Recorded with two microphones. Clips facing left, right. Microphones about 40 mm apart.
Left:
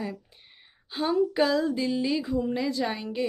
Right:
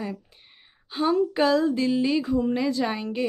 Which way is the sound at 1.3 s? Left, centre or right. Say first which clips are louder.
Right 3 dB; centre.